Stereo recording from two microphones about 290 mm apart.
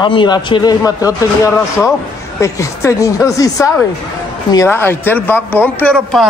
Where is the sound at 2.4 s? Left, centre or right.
Centre.